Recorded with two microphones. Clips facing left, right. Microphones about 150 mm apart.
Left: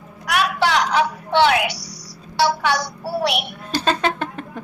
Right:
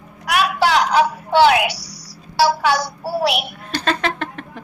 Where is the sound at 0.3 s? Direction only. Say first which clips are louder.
Right 2 dB; 5° right (ahead or behind).